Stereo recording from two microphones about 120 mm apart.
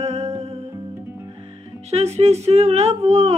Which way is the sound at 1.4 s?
60° right (ahead or behind).